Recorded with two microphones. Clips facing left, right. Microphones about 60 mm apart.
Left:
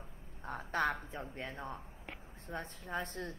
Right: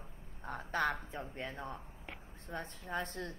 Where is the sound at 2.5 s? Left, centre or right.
Right.